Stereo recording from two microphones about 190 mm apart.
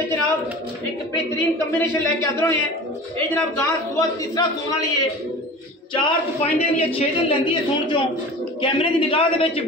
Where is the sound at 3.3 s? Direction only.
15° left (ahead or behind).